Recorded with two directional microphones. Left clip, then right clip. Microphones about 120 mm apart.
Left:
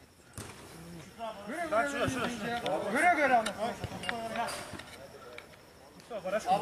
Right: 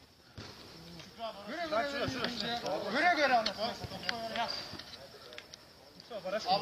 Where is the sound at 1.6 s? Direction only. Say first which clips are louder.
Left 3 dB; 10° right (ahead or behind).